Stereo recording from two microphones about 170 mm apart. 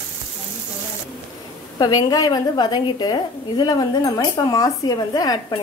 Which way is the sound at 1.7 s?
20° left (ahead or behind).